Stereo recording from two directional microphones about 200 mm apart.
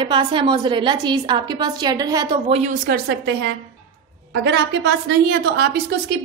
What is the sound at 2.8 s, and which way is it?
A woman's voice, 60° right (ahead or behind).